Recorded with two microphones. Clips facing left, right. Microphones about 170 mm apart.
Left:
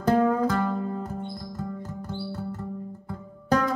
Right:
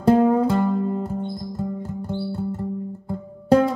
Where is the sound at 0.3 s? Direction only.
30° right (ahead or behind).